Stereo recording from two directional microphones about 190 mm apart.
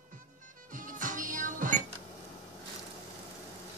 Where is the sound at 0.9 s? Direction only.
45° right (ahead or behind).